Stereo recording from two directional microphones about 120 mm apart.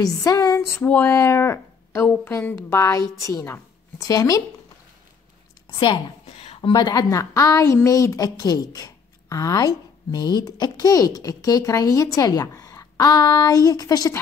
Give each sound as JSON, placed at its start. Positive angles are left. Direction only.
{"t": 0.0, "sound": "a woman's voice", "side_deg": 30}
{"t": 5.8, "sound": "a woman's voice", "side_deg": 50}
{"t": 6.7, "sound": "a woman's voice", "side_deg": 35}